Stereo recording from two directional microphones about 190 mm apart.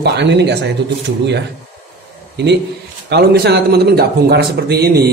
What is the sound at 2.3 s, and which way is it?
A man's voice, 65° right (ahead or behind).